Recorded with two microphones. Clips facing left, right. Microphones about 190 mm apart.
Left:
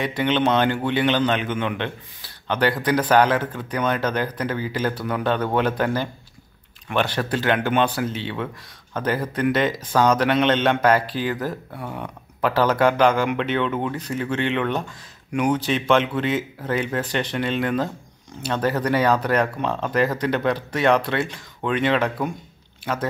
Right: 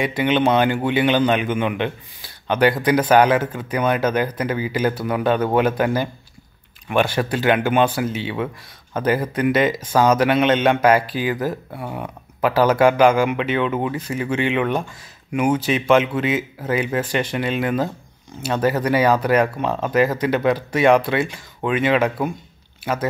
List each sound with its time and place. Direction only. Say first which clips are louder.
0.0 s a man's voice: right 3 dB; 10° right (ahead or behind)